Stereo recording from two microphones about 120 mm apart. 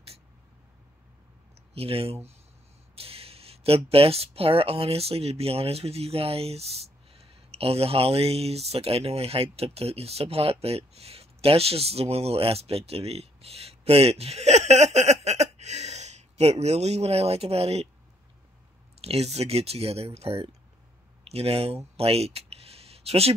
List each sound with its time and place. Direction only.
1.7 s speech: 55° right (ahead or behind)
18.9 s speech: 55° right (ahead or behind)